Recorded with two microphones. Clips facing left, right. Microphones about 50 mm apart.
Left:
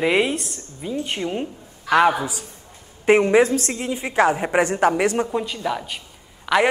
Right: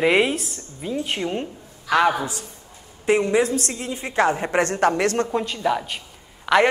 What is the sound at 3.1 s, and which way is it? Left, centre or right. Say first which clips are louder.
Speech: left 4 dB; left.